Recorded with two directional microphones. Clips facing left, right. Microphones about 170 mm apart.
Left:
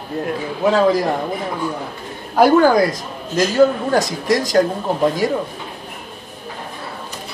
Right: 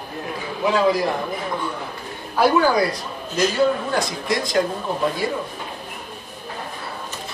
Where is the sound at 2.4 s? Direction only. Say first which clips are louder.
Left 5 dB; 45° left (ahead or behind).